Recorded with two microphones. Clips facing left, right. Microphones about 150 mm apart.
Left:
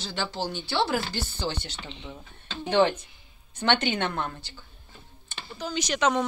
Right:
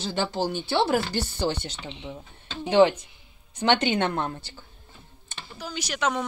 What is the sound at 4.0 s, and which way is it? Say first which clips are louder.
Speech: right 4 dB; 35° right (ahead or behind).